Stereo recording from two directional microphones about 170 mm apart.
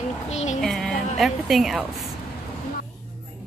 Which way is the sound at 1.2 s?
Centre (ahead or behind).